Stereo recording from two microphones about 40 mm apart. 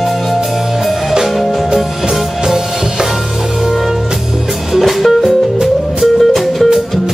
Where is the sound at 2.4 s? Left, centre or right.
Centre.